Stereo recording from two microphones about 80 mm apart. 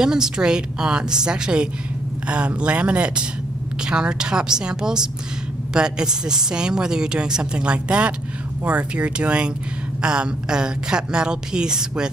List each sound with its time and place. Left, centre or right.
0.0 s speech: centre